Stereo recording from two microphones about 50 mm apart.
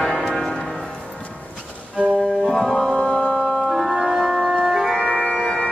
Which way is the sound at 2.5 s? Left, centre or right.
Centre.